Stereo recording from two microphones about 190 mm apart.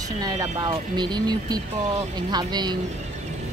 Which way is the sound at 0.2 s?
20° right (ahead or behind).